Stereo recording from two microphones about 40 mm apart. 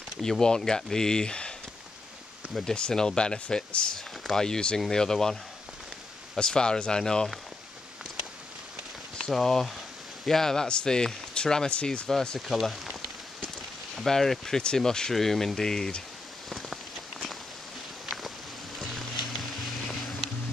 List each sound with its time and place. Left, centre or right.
0.2 s speech: centre
2.6 s speech: centre
9.2 s speech: centre; by 12.1 s left
12.1 s speech: centre
12.4 s speech: centre
13.9 s speech: centre
16.4 s a sound: centre
18.8 s music: centre